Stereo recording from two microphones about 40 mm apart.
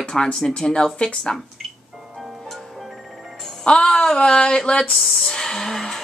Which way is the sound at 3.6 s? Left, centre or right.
Left.